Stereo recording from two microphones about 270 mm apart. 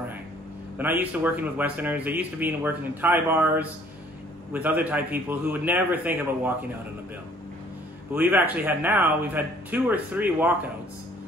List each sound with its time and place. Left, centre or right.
0.7 s speech: centre
8.1 s speech: centre